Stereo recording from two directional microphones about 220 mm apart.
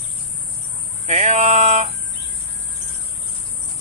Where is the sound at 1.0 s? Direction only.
30° right (ahead or behind).